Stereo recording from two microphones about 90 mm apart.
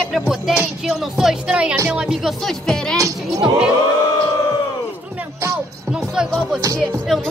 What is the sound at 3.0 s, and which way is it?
Speech, 40° right (ahead or behind).